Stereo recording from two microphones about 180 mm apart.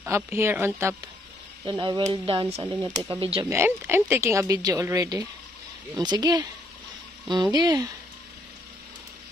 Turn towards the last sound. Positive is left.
turn(degrees=-20)  # may be behind; listen again after turning